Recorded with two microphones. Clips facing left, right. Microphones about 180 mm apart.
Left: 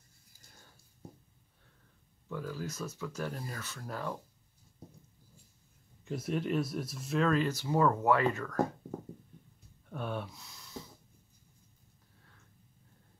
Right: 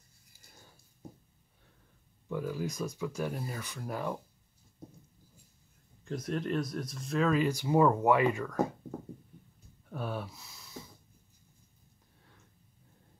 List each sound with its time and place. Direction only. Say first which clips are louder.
2.2 s speech: right 4 dB; 15° right (ahead or behind)
6.0 s speech: even; 5° left (ahead or behind); by 8.6 s 10° right (ahead or behind)
9.8 s speech: right 1 dB; 5° right (ahead or behind)